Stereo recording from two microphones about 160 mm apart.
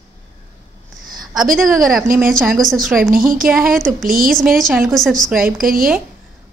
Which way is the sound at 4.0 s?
60° right (ahead or behind).